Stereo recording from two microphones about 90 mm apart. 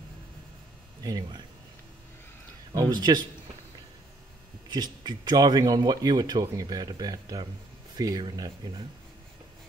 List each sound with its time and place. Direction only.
1.0 s speech: 45° right (ahead or behind)
2.7 s speech: 45° right (ahead or behind)
4.6 s speech: 50° right (ahead or behind)